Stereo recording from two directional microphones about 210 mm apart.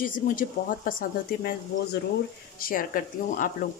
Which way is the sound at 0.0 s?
40° left (ahead or behind).